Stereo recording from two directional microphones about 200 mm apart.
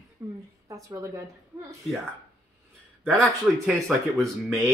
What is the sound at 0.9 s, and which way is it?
Speech, 15° right (ahead or behind).